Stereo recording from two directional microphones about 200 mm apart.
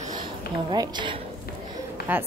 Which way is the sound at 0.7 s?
20° right (ahead or behind).